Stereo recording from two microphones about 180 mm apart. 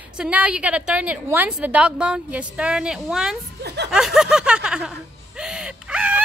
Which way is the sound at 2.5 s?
5° right (ahead or behind).